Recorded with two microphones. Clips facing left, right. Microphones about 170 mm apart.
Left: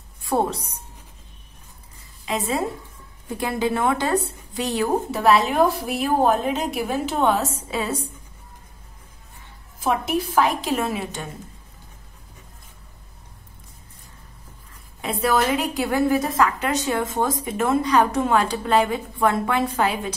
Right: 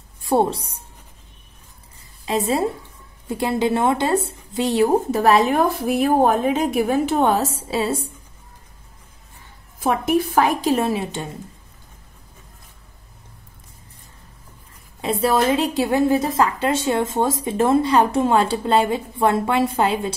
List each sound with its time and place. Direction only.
0.2 s a woman's voice: 30° right (ahead or behind)
2.2 s a woman's voice: 30° right (ahead or behind)
5.1 s a woman's voice: 45° right (ahead or behind); by 8.1 s 30° right (ahead or behind)
10.0 s a woman's voice: 55° right (ahead or behind)
10.7 s a woman's voice: 30° right (ahead or behind)
15.0 s a woman's voice: 30° right (ahead or behind)